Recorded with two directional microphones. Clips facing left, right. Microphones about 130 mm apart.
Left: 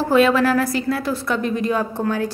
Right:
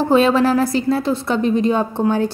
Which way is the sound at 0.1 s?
25° right (ahead or behind).